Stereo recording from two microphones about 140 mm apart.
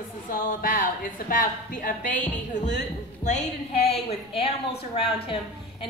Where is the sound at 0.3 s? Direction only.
75° left (ahead or behind).